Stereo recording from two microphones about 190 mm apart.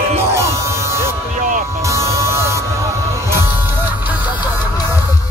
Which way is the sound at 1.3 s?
45° right (ahead or behind).